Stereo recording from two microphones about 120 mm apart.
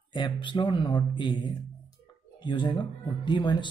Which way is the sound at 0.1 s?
40° left (ahead or behind).